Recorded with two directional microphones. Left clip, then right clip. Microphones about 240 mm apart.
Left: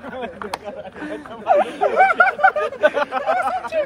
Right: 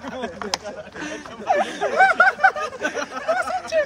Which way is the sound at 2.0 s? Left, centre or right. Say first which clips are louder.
Even; centre.